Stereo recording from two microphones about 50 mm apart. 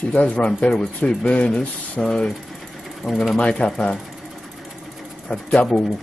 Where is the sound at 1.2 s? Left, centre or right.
Left.